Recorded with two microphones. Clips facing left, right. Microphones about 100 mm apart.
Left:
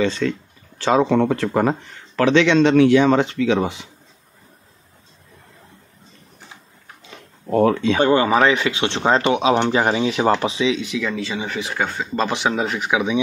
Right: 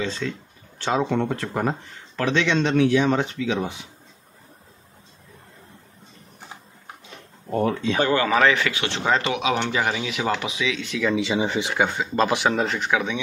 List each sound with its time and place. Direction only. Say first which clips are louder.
0.0 s speech: left 7 dB; 90° left
7.5 s speech: left 6 dB; 90° left
8.0 s speech: left 3 dB; 20° left (ahead or behind)
11.1 s speech: right 3 dB; 20° right (ahead or behind)
11.7 s speech: right 1 dB; 10° right (ahead or behind); by 13.2 s 15° left (ahead or behind)